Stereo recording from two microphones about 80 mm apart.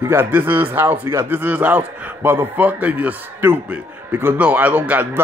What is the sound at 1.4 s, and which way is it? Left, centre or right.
Speech, right.